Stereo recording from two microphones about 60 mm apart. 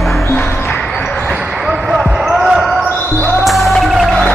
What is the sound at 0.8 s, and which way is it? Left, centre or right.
Basketball bounce, left.